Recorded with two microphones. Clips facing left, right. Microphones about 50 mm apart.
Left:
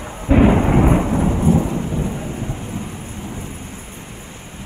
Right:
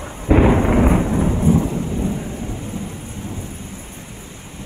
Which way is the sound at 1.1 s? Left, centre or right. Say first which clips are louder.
Left 1 dB; centre.